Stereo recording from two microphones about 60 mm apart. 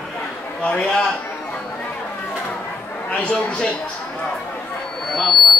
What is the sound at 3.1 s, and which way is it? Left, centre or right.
Speech, left.